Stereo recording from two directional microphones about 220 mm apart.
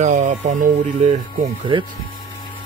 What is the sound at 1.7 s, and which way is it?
Speech, 20° right (ahead or behind).